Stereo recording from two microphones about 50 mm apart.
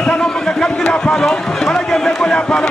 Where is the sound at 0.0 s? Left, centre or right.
Centre.